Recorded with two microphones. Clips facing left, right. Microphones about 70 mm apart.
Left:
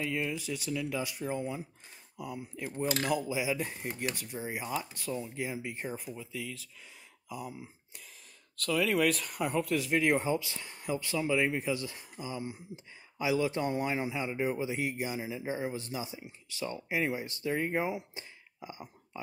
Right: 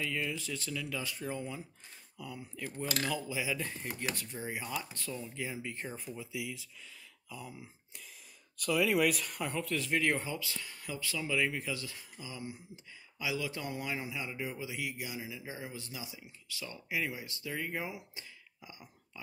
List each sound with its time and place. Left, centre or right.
0.0 s speech: centre
6.1 s speech: centre
7.2 s speech: centre
8.5 s speech: centre
10.1 s speech: left